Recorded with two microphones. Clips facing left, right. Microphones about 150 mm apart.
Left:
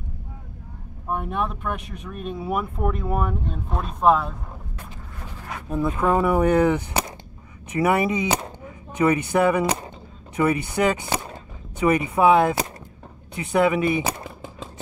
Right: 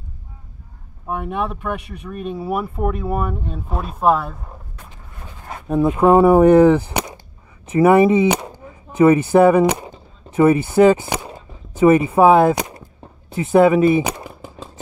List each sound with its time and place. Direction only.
1.0 s speech: 10° right (ahead or behind)
5.9 s speech: 30° right (ahead or behind)
9.7 s a sound: 10° right (ahead or behind)
10.3 s speech: 30° right (ahead or behind)